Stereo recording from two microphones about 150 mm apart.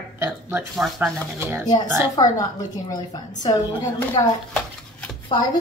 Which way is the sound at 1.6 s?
25° left (ahead or behind).